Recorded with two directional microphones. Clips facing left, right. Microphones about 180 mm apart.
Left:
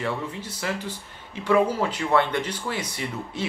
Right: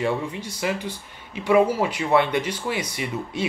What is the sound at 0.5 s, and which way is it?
Speech, 10° right (ahead or behind).